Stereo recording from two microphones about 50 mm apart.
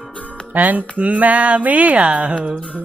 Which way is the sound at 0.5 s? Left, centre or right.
Right.